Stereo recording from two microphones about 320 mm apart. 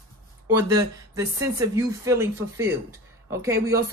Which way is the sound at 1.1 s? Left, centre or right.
Centre.